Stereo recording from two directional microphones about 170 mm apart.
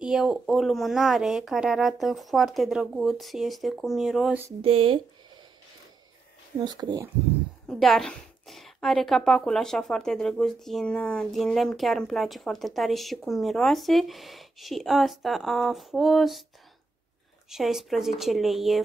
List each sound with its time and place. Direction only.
0.0 s a woman's voice: 5° right (ahead or behind)
4.6 s speech: 35° right (ahead or behind)
6.6 s speech: 25° right (ahead or behind)
7.6 s a woman's voice: 5° left (ahead or behind)
17.5 s a woman's voice: centre (ahead or behind)